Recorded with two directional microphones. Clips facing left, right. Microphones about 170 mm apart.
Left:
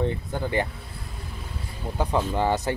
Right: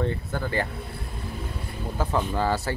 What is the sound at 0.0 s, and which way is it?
Speech, 20° left (ahead or behind).